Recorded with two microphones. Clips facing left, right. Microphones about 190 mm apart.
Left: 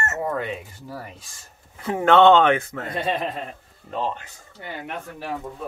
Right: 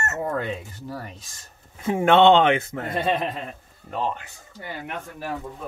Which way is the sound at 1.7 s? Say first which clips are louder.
Left 1 dB; 20° right (ahead or behind).